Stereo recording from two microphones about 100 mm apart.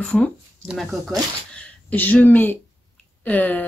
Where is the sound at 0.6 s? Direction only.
Centre (ahead or behind).